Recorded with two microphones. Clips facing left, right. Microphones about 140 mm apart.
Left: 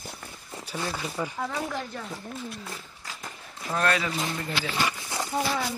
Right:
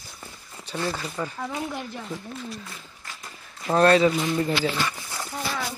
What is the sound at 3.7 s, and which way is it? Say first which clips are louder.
Speech: right 9 dB; 30° right (ahead or behind).